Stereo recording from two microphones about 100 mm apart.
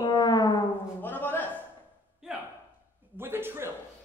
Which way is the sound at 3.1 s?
25° right (ahead or behind).